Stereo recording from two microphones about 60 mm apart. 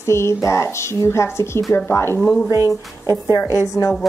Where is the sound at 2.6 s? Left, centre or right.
Left.